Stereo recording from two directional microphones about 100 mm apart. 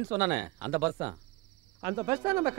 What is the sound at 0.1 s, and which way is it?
A man's voice, 30° right (ahead or behind).